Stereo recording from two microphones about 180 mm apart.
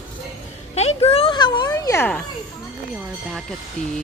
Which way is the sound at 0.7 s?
35° left (ahead or behind).